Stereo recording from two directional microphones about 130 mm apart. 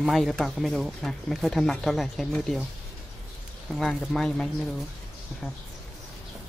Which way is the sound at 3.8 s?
5° left (ahead or behind).